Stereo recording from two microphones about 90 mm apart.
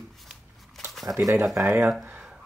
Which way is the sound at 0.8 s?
5° left (ahead or behind).